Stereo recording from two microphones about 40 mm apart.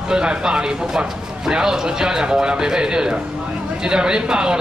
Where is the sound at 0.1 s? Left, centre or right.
Right.